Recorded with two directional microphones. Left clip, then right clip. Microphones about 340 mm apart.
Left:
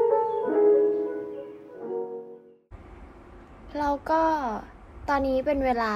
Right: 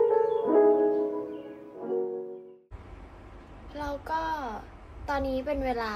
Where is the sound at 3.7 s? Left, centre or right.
Centre.